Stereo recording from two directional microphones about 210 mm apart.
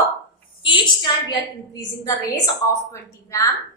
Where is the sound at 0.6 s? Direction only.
25° left (ahead or behind).